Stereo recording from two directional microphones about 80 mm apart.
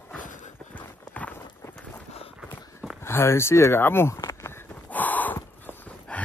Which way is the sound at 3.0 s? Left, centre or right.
Left.